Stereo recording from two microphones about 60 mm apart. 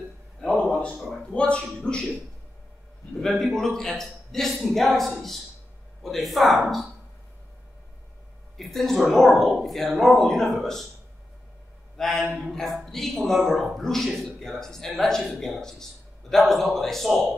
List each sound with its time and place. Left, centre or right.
0.4 s a sound: centre
1.1 s speech: centre
3.2 s a man's voice: centre
8.5 s a man's voice: centre
12.0 s a man's voice: centre